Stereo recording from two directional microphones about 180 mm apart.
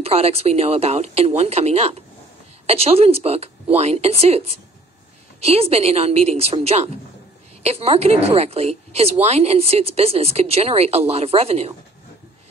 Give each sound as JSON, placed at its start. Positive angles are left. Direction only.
{"t": 0.0, "sound": "a woman's voice", "side_deg": -35}
{"t": 5.4, "sound": "a woman's voice", "side_deg": -35}